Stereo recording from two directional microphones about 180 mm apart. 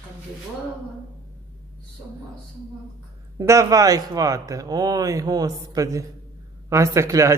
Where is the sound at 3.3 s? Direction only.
20° right (ahead or behind).